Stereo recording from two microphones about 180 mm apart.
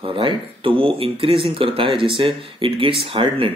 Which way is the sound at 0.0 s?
30° right (ahead or behind).